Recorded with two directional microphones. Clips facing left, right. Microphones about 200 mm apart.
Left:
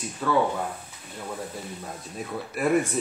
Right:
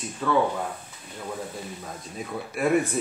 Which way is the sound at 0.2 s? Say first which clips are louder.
Right 1 dB; centre (ahead or behind).